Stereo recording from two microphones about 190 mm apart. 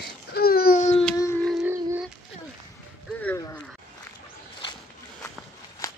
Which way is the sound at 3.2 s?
10° left (ahead or behind).